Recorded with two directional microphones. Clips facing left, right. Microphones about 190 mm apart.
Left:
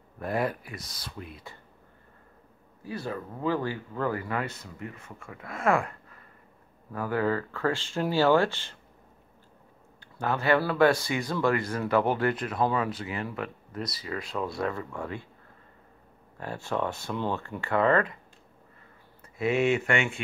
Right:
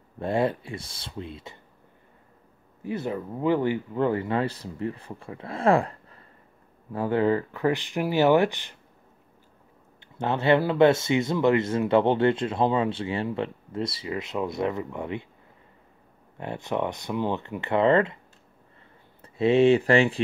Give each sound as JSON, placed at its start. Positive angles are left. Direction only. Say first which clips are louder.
{"t": 0.2, "sound": "speech", "louder": "right 4 dB", "side_deg": -25}
{"t": 2.8, "sound": "speech", "louder": "right 5 dB", "side_deg": -20}
{"t": 9.9, "sound": "speech", "louder": "right 2 dB", "side_deg": -25}
{"t": 16.3, "sound": "speech", "louder": "right 2 dB", "side_deg": -20}
{"t": 19.2, "sound": "speech", "louder": "right 6 dB", "side_deg": -30}